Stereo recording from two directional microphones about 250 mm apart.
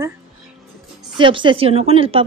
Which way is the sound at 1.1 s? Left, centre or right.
Centre.